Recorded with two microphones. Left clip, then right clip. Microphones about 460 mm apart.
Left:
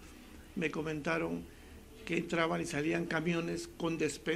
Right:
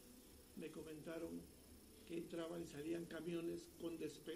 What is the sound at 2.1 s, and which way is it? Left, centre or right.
A man's voice, left.